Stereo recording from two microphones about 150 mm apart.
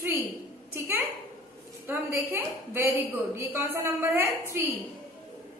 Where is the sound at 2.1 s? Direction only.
15° right (ahead or behind).